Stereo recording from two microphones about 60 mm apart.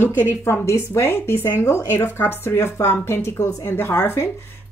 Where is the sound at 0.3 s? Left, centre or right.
Left.